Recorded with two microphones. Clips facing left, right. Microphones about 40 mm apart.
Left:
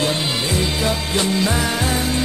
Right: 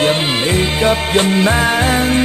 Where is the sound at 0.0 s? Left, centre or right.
Right.